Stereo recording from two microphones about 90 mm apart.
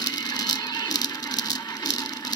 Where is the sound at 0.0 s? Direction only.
45° left (ahead or behind).